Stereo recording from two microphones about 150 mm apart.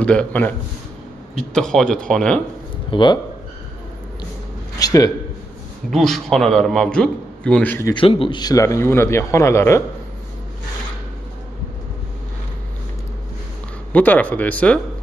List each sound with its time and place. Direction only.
0.0 s a man's voice: 10° left (ahead or behind)
2.9 s speech: 30° left (ahead or behind)
4.7 s a sound: 25° left (ahead or behind)
5.9 s a man's voice: centre (ahead or behind)
7.9 s a man's voice: 35° left (ahead or behind); by 9.8 s 20° left (ahead or behind)
13.9 s speech: 10° left (ahead or behind)